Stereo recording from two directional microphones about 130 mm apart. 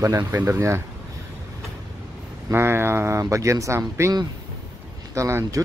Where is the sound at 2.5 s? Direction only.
20° right (ahead or behind).